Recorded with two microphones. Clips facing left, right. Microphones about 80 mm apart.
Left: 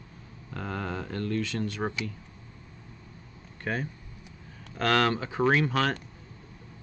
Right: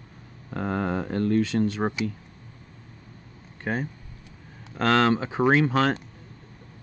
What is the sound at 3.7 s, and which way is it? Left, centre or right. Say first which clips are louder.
Speech: right 3 dB; right.